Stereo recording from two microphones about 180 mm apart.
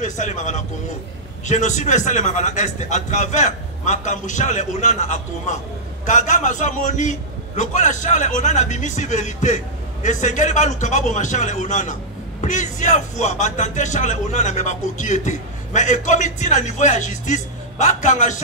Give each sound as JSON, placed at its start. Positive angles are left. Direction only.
{"t": 0.0, "sound": "a man's voice", "side_deg": 45}